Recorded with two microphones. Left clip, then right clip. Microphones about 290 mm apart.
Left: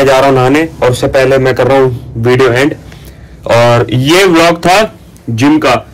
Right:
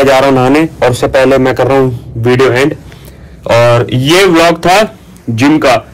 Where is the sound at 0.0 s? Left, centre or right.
Centre.